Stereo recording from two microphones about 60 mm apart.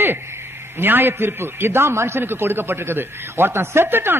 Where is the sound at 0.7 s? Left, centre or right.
Right.